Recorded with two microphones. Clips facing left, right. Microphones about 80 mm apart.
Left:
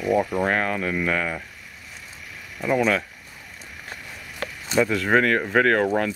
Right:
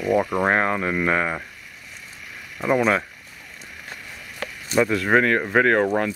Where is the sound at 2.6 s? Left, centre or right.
Right.